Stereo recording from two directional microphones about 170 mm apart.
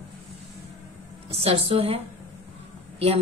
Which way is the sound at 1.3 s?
35° right (ahead or behind).